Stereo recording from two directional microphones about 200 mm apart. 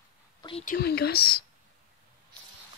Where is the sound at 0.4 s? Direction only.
25° left (ahead or behind).